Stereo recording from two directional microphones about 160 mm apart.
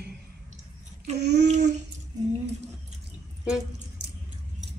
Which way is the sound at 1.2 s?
90° right.